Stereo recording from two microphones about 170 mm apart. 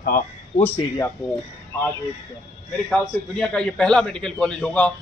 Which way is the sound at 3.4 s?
5° left (ahead or behind).